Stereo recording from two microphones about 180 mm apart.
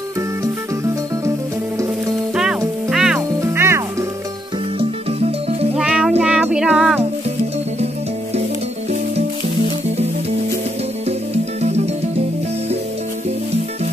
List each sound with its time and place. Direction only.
2.9 s music: 5° right (ahead or behind)
3.2 s music: 15° right (ahead or behind)
4.7 s music: 35° right (ahead or behind)
5.8 s music: 5° right (ahead or behind)
11.1 s music: 35° right (ahead or behind)